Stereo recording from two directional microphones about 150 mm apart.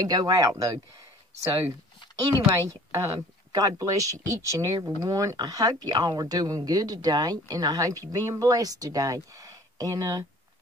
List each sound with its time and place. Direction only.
0.0 s speech: 25° right (ahead or behind)
2.1 s speech: 20° right (ahead or behind)